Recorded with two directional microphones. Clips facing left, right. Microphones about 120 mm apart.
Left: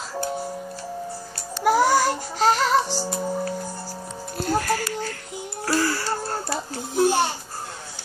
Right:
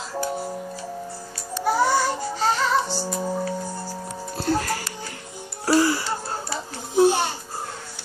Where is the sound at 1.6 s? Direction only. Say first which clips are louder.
Left 2 dB; 90° left.